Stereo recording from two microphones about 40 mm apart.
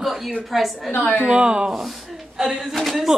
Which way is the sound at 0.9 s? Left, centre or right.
Left.